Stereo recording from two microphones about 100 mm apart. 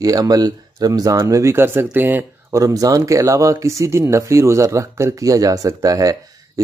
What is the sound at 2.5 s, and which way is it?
Speech, 35° right (ahead or behind).